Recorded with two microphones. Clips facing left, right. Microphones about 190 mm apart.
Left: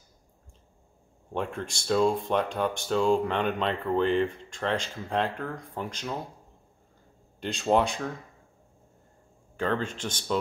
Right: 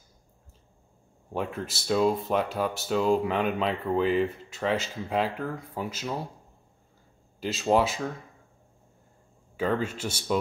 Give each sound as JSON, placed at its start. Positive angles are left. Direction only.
{"t": 1.3, "sound": "speech", "side_deg": -5}
{"t": 7.3, "sound": "speech", "side_deg": -5}
{"t": 9.6, "sound": "speech", "side_deg": -10}